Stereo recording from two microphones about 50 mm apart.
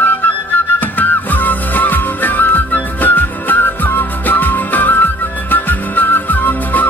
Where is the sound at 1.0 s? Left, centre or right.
Left.